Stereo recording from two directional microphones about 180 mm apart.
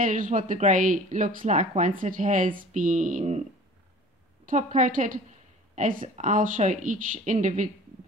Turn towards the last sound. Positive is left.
turn(degrees=-45)  # may be behind; listen again after turning